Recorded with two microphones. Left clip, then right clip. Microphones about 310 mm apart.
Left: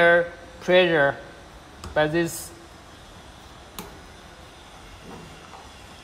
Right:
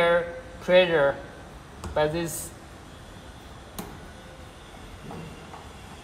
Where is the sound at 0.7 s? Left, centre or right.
Left.